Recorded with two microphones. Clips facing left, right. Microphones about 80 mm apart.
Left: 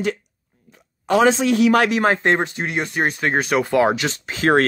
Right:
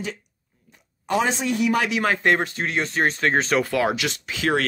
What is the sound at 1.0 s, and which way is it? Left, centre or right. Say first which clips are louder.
Speech: left 7 dB; left.